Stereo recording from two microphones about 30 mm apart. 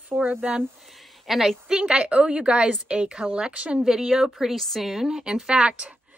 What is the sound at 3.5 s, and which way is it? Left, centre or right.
Speech, right.